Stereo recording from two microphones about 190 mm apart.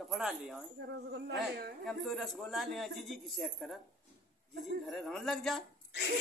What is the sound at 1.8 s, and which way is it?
Speech, centre (ahead or behind).